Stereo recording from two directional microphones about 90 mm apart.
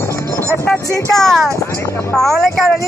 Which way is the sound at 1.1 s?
5° left (ahead or behind).